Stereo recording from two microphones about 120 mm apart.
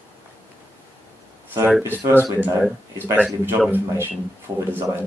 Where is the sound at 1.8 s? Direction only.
20° right (ahead or behind).